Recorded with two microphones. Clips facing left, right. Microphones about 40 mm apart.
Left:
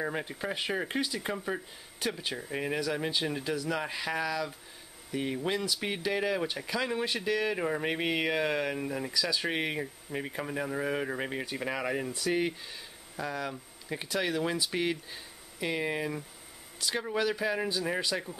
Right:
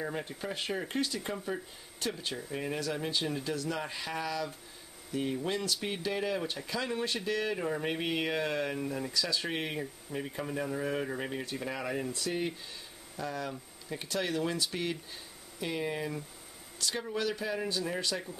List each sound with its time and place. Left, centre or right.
0.0 s speech: left; by 4.6 s centre
5.1 s speech: left